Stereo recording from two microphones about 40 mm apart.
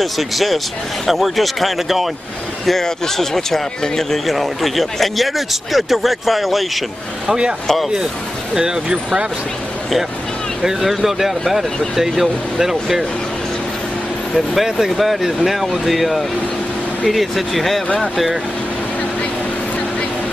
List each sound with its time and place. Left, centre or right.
0.0 s speech: centre
2.8 s speech: centre
7.2 s speech: right
7.6 s speech: centre
8.5 s speech: centre
10.6 s speech: centre
14.3 s speech: centre